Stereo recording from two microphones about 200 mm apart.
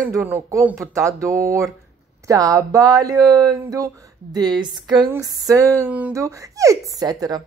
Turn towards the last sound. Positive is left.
turn(degrees=-20)  # may be behind; listen again after turning